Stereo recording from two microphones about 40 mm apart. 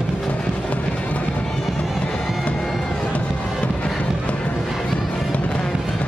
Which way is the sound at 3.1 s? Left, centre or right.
Left.